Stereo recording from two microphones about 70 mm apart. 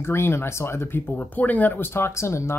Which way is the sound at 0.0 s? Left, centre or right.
Left.